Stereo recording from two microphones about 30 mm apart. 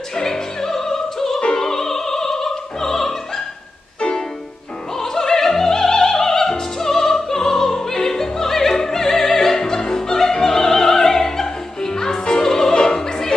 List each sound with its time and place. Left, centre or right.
0.1 s music: centre
4.9 s music: centre
12.4 s opera: centre